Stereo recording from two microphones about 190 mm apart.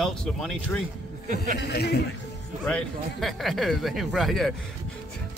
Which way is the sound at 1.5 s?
60° left (ahead or behind).